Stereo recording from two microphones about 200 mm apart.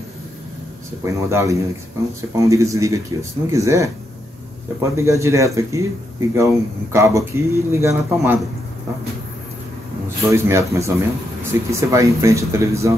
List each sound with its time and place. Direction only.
1.0 s speech: 15° right (ahead or behind)
10.3 s speech: 15° right (ahead or behind)